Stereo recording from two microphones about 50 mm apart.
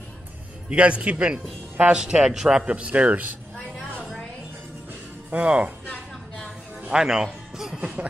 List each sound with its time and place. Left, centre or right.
0.7 s a man's voice: right
2.6 s speech: right
5.3 s speech: right
6.9 s music: centre
7.8 s a sound: right